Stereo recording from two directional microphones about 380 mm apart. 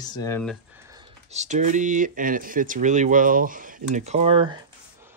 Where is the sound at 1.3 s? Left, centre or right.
Centre.